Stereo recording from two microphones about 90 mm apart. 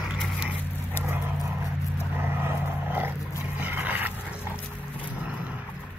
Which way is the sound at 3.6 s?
20° right (ahead or behind).